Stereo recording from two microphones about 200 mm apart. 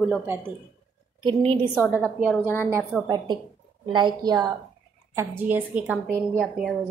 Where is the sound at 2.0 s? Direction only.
Centre (ahead or behind).